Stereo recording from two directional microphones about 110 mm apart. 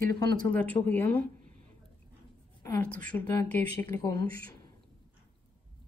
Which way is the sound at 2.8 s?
10° left (ahead or behind).